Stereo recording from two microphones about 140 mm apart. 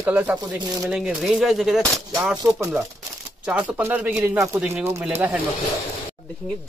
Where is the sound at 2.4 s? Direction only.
25° right (ahead or behind).